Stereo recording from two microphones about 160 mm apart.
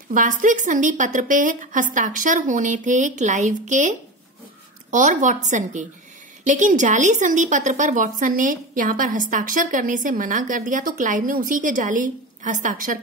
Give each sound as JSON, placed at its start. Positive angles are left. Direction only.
{"t": 0.1, "sound": "a woman's voice", "side_deg": -55}
{"t": 4.9, "sound": "a woman's voice", "side_deg": -50}